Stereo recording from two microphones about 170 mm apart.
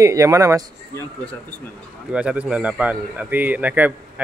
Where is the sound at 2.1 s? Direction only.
5° right (ahead or behind).